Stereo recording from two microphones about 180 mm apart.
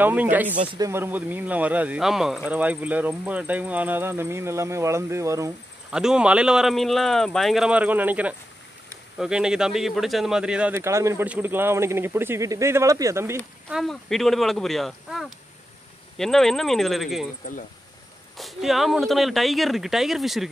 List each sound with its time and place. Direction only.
0.0 s speech: 10° right (ahead or behind)
5.9 s speech: 5° right (ahead or behind)
13.7 s speech: centre (ahead or behind)
18.4 s speech: centre (ahead or behind)